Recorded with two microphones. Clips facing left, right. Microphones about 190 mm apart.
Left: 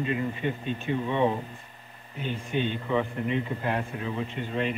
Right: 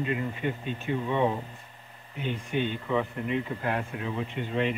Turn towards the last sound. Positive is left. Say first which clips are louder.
# right 1 dB
turn(degrees=-15)  # may be behind; listen again after turning